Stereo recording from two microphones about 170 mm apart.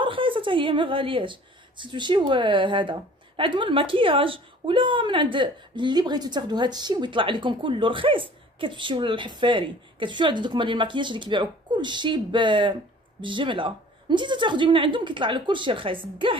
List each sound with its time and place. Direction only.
0.0 s a woman's voice: 30° right (ahead or behind)